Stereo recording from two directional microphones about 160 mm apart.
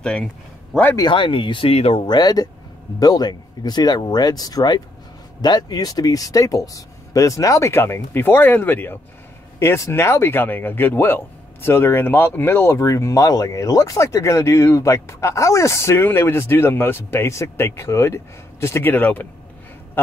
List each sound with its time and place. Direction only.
0.0 s speech: 5° left (ahead or behind)
0.9 s speech: 30° left (ahead or behind); by 19.2 s 10° left (ahead or behind)